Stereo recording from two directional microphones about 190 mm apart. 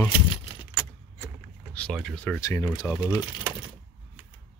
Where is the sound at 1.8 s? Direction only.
5° left (ahead or behind).